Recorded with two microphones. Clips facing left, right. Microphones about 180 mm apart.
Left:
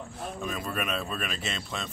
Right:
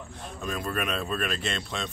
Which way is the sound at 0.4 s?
Centre (ahead or behind).